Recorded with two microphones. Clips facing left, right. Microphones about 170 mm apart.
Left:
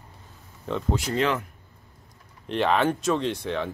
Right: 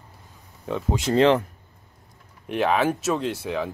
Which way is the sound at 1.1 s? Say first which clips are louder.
Right 9 dB; 30° right (ahead or behind).